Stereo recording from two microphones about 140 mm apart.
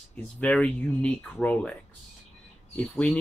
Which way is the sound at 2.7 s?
10° left (ahead or behind).